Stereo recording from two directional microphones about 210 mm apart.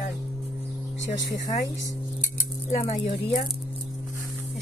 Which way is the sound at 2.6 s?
30° left (ahead or behind).